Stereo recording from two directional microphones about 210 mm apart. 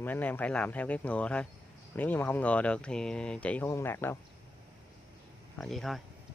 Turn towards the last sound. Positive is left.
turn(degrees=0)  # may be behind; listen again after turning